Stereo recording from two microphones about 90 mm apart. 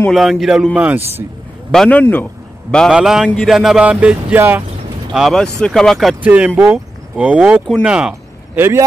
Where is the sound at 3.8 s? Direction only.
15° right (ahead or behind).